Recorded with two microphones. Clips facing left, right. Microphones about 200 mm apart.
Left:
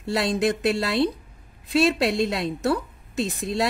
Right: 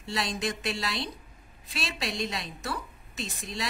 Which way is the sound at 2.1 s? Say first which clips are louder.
Left 10 dB; 60° left (ahead or behind).